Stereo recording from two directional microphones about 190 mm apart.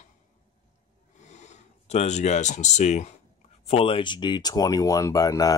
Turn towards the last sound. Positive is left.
turn(degrees=20)  # may be behind; listen again after turning